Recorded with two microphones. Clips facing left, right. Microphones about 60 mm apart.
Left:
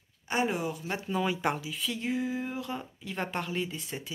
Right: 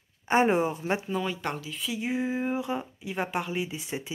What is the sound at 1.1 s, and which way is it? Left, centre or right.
Speech, centre.